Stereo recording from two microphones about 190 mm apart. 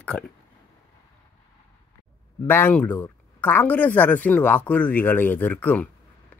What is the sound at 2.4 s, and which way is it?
Speech, 10° left (ahead or behind).